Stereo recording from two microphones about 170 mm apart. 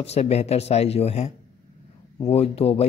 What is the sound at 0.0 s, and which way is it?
Speech, 35° left (ahead or behind).